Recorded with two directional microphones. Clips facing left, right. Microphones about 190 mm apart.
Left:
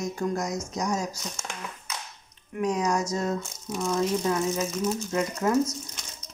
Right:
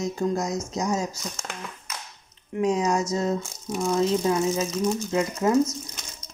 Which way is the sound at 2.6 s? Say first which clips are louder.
Right 3 dB; 25° right (ahead or behind).